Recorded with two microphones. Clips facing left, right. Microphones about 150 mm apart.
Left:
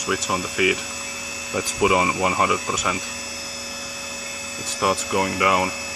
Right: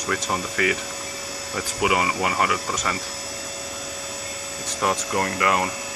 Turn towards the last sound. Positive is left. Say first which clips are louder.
# left 2 dB
turn(degrees=15)  # may be behind; listen again after turning